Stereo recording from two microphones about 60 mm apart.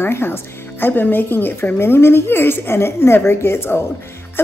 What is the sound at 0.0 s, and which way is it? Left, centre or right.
Speech, left.